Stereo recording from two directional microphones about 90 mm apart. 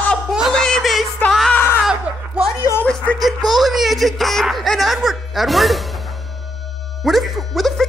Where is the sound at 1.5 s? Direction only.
25° left (ahead or behind).